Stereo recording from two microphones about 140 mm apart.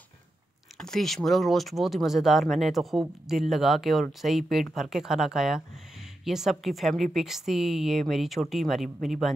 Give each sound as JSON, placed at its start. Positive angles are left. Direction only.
{"t": 0.7, "sound": "speech", "side_deg": 5}